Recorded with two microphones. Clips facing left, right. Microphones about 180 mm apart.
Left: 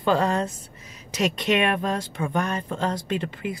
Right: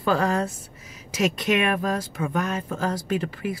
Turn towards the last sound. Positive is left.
turn(degrees=-5)  # may be behind; listen again after turning